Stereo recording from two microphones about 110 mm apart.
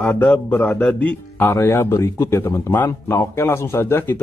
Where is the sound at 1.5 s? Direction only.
25° left (ahead or behind).